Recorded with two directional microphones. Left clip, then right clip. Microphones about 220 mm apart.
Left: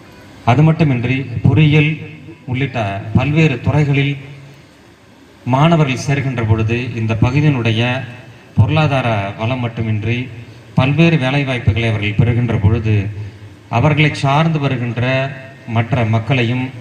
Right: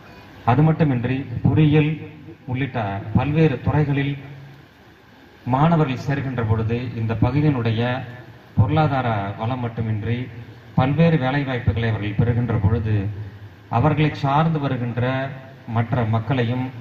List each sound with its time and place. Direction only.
0.5 s a man's voice: 50° left (ahead or behind)
5.5 s a man's voice: 50° left (ahead or behind)